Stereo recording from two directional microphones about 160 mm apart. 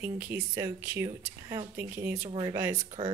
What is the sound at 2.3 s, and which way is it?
Speech, 30° right (ahead or behind).